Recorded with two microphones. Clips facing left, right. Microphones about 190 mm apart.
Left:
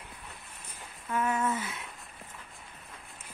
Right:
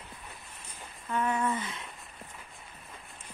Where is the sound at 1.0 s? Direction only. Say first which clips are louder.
Even; 5° left (ahead or behind).